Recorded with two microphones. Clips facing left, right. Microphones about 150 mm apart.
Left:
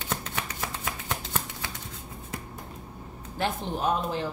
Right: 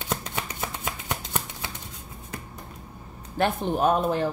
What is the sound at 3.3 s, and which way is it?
Speech, 55° right (ahead or behind).